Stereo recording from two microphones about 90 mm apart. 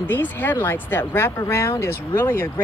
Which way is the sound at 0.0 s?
20° left (ahead or behind).